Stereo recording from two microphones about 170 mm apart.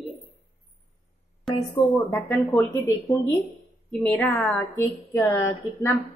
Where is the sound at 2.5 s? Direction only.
15° left (ahead or behind).